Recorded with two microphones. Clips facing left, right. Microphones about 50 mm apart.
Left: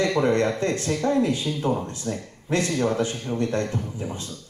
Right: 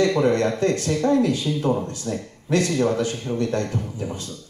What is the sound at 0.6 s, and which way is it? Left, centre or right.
Speech, left.